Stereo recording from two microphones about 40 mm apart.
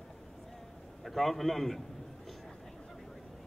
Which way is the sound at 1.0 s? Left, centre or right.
Centre.